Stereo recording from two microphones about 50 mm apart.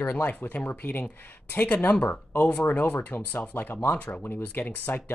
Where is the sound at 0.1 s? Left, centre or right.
Left.